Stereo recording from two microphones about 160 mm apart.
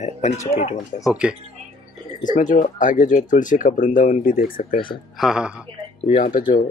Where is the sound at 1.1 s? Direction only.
5° right (ahead or behind).